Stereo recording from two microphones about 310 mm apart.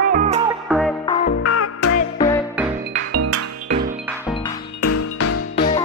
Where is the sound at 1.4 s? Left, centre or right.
Left.